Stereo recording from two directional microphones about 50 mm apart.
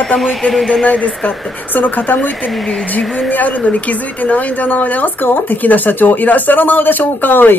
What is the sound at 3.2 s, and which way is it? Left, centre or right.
A woman's voice, left.